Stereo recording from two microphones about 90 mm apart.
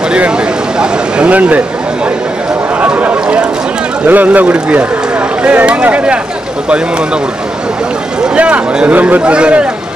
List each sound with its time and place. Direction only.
0.7 s speech: 10° right (ahead or behind)
2.8 s speech: 15° right (ahead or behind)
8.4 s speech: 10° right (ahead or behind)